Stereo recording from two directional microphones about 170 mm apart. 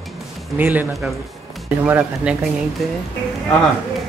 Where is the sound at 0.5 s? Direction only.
10° right (ahead or behind).